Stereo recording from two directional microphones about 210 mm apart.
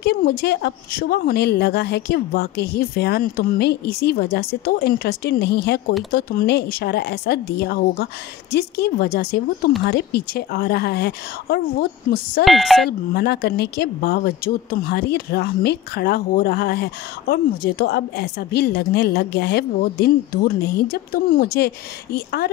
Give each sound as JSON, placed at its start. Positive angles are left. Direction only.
{"t": 0.0, "sound": "a woman's voice", "side_deg": 50}
{"t": 12.4, "sound": "speech", "side_deg": 0}
{"t": 13.1, "sound": "a woman's voice", "side_deg": 50}